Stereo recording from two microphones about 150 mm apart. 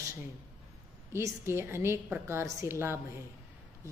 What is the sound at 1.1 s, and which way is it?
A woman's voice, 15° right (ahead or behind).